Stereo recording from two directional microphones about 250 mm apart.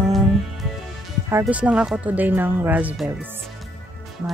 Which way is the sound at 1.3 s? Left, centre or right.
Centre.